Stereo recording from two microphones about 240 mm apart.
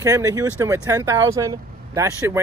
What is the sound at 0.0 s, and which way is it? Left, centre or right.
Speech, centre.